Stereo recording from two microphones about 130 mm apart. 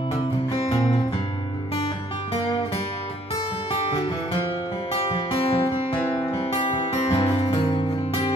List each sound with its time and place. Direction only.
3.7 s music: 45° left (ahead or behind)